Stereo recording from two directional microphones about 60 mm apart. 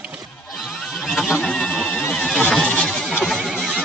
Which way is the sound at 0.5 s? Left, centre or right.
Centre.